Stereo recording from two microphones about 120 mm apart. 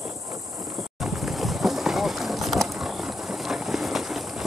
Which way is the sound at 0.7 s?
Centre (ahead or behind).